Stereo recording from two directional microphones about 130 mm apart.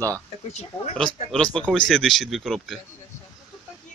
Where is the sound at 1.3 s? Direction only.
5° left (ahead or behind).